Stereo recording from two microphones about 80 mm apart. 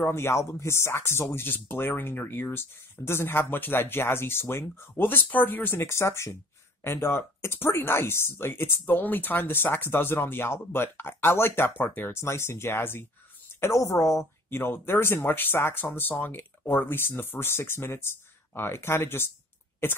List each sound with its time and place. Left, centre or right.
0.0 s speech: left